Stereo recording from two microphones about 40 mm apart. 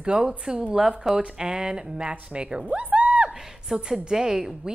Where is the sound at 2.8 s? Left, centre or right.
Right.